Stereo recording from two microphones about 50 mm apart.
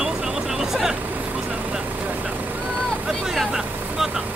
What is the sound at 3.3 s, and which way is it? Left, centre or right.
Speech, centre.